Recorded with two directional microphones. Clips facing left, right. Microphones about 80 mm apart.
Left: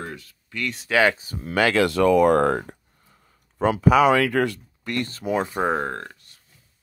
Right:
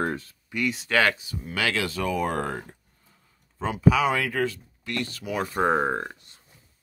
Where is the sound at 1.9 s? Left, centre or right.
Left.